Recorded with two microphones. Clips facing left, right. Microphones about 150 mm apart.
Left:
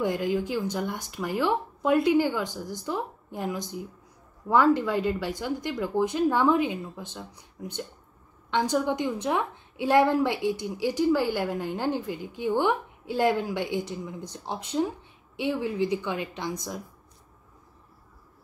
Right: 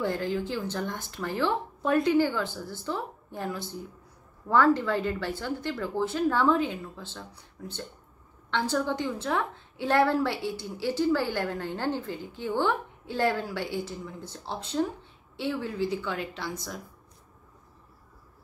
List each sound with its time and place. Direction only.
0.0 s a woman's voice: 15° left (ahead or behind)